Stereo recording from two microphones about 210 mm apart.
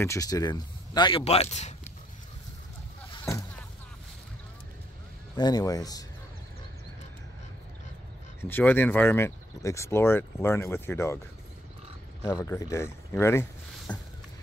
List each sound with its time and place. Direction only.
0.0 s speech: 15° left (ahead or behind); by 1.8 s 30° left (ahead or behind)
3.1 s boat: 15° left (ahead or behind)
5.3 s speech: 20° left (ahead or behind)
8.4 s speech: 10° left (ahead or behind)
12.2 s speech: 15° left (ahead or behind)